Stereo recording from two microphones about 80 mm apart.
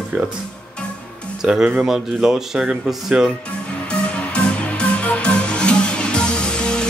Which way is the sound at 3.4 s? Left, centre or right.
Centre.